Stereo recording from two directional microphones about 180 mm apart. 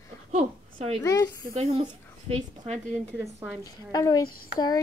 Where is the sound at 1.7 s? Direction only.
25° right (ahead or behind).